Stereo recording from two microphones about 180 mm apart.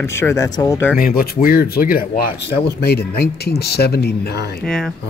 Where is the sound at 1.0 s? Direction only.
55° left (ahead or behind).